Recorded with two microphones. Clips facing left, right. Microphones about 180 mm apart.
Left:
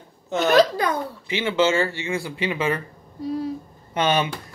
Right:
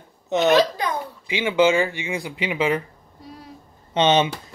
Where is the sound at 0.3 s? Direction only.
20° right (ahead or behind).